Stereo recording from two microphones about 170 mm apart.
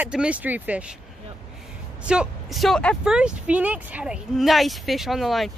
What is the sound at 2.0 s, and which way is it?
Speech, 5° right (ahead or behind).